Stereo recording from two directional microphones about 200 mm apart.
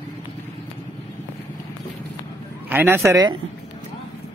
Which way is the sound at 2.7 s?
10° right (ahead or behind).